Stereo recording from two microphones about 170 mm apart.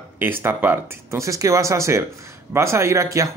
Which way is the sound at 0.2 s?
15° right (ahead or behind).